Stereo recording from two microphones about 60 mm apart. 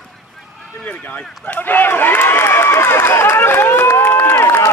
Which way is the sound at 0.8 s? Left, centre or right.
Left.